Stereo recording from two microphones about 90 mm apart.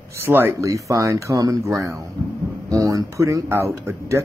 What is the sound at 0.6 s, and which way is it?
Speech, 40° right (ahead or behind).